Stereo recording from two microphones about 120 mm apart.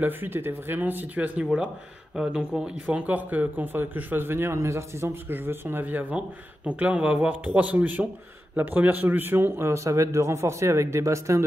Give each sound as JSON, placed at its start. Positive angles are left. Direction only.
{"t": 0.0, "sound": "a man's voice", "side_deg": -20}